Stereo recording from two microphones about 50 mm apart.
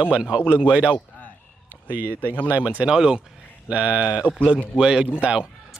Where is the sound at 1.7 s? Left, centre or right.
Right.